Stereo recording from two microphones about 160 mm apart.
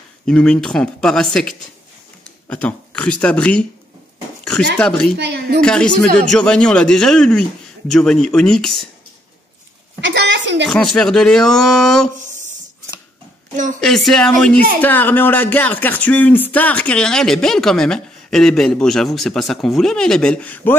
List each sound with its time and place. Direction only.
0.3 s speech: 5° left (ahead or behind)
4.7 s speech: 5° left (ahead or behind)
5.1 s speech: 90° right
5.6 s speech: 5° left (ahead or behind)
9.9 s a sound: 90° right
10.7 s speech: 5° left (ahead or behind)
12.2 s a sound: 50° right (ahead or behind)
13.8 s speech: centre (ahead or behind)